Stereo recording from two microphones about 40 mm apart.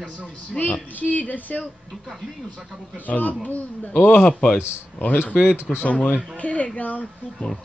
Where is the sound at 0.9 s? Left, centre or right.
Left.